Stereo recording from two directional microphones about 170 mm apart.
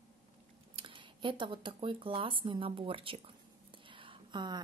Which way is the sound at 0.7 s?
30° right (ahead or behind).